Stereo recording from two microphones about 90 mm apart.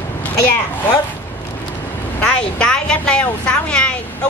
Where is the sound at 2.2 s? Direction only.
10° left (ahead or behind).